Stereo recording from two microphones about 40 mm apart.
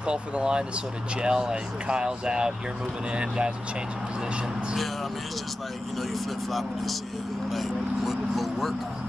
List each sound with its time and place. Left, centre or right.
0.0 s speech: right
7.5 s speech: centre